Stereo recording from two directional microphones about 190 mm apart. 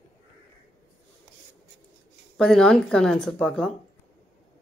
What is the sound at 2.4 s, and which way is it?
Speech, 5° left (ahead or behind).